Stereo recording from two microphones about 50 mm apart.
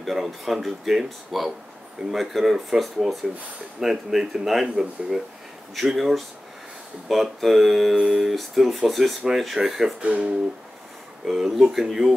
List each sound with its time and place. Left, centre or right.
0.0 s speech: centre
10.0 s speech: right
11.2 s speech: centre